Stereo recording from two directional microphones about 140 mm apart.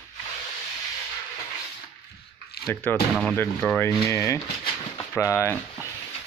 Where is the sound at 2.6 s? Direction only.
90° left.